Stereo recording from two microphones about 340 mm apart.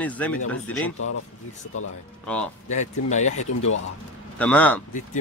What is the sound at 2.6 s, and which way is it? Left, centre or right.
Speech, left.